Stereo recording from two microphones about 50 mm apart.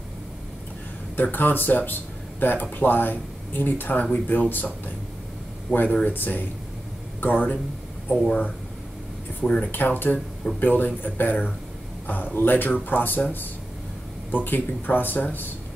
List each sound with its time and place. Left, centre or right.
1.1 s speech: left
9.7 s speech: left
14.3 s speech: left